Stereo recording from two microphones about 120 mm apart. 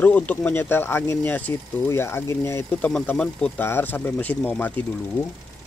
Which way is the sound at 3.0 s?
10° left (ahead or behind).